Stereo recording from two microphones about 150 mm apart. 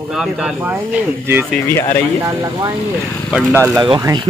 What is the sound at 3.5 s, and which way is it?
Speech, 15° right (ahead or behind).